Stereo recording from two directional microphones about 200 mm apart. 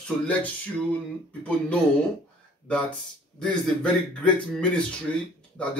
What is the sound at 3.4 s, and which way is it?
A man's voice, 5° left (ahead or behind).